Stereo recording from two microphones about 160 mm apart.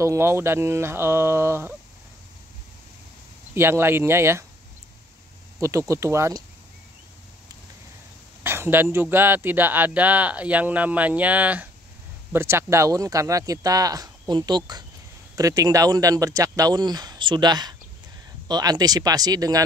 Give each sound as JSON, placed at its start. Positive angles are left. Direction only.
{"t": 0.0, "sound": "speech", "side_deg": -15}
{"t": 3.5, "sound": "speech", "side_deg": -15}
{"t": 5.6, "sound": "speech", "side_deg": -20}
{"t": 8.5, "sound": "speech", "side_deg": -15}